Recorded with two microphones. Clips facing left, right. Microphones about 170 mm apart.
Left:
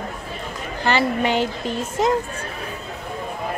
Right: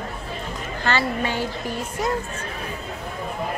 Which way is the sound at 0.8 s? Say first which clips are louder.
Left 4 dB; 15° left (ahead or behind).